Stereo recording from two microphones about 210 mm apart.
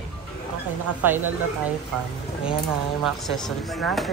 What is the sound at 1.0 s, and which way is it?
Speech, 10° right (ahead or behind).